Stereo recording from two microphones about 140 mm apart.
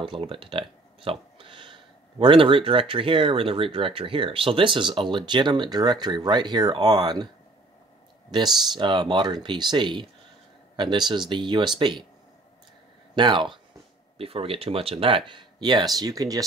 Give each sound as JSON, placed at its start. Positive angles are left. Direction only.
{"t": 0.0, "sound": "speech", "side_deg": -40}
{"t": 8.3, "sound": "speech", "side_deg": -30}
{"t": 13.1, "sound": "speech", "side_deg": -35}